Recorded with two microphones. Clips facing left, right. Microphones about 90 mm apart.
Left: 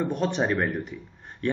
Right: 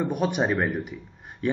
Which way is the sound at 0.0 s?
10° right (ahead or behind).